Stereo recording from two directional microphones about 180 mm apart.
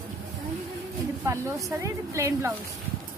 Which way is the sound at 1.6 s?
15° right (ahead or behind).